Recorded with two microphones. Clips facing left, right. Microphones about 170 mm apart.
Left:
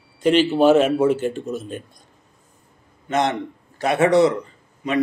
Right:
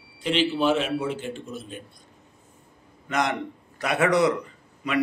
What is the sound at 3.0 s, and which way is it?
A man's voice, 25° left (ahead or behind).